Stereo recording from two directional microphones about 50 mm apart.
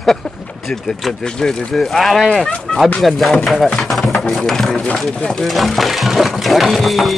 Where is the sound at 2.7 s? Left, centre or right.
Centre.